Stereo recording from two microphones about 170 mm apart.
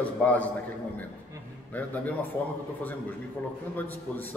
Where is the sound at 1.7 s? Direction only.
10° left (ahead or behind).